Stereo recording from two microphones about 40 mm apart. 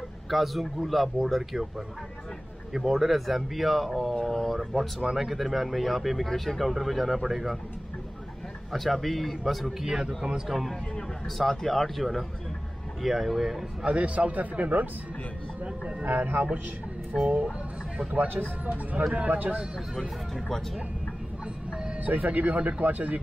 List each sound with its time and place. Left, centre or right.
0.3 s speech: centre
2.7 s speech: centre
5.1 s speech: centre
8.7 s speech: centre
9.8 s speech: centre
11.3 s speech: centre
13.8 s speech: right
16.0 s speech: right
21.6 s music: right
22.0 s speech: right